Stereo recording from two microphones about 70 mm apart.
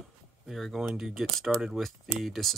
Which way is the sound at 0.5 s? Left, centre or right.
Centre.